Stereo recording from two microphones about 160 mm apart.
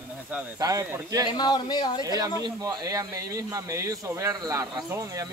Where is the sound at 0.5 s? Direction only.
20° right (ahead or behind).